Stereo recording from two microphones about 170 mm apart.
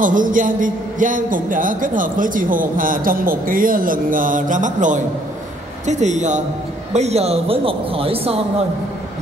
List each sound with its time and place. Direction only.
0.0 s a man's voice: 50° right (ahead or behind); by 8.4 s 35° right (ahead or behind)